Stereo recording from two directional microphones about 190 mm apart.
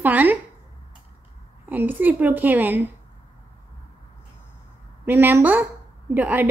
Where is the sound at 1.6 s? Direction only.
10° right (ahead or behind).